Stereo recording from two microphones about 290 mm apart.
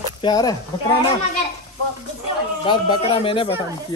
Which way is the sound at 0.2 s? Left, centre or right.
Centre.